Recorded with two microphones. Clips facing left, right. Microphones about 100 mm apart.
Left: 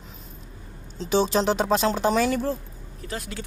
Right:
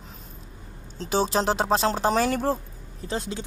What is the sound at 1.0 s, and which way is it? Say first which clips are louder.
Speech: left 2 dB; 35° right (ahead or behind).